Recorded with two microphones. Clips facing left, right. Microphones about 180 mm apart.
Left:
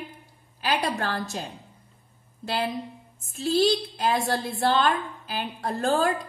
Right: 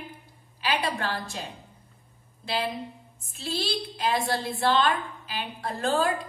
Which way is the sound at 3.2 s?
45° left (ahead or behind).